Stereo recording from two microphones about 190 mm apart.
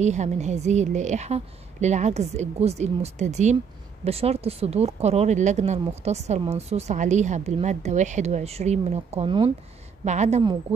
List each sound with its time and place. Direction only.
0.0 s speech: 35° right (ahead or behind)